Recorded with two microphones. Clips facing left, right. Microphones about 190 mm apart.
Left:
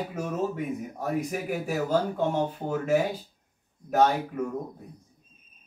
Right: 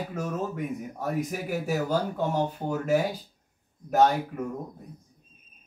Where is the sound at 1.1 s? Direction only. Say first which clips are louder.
Left 1 dB; centre (ahead or behind).